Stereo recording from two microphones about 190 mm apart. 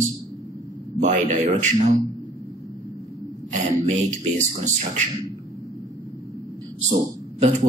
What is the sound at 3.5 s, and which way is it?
A man's voice, 40° right (ahead or behind).